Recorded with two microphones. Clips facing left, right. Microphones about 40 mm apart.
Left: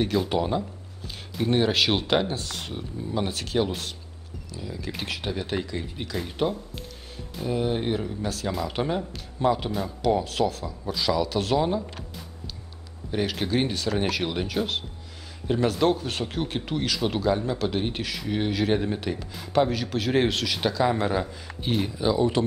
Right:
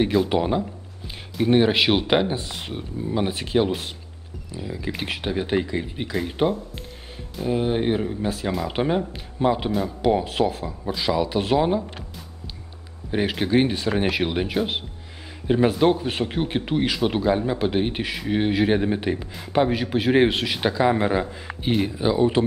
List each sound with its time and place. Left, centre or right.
0.0 s speech: centre
9.7 s speech: centre
10.0 s speech: right
13.1 s speech: right